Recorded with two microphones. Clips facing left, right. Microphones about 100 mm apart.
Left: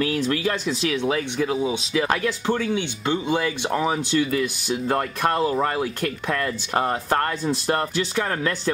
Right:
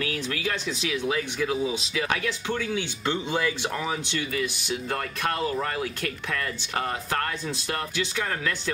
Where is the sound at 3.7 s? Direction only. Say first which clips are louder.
Left 7 dB; 35° left (ahead or behind).